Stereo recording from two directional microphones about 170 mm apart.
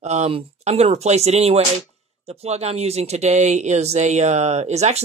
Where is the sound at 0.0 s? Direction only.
40° right (ahead or behind).